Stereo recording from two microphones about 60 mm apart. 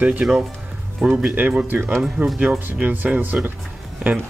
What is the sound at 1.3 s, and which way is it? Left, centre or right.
Speech, right.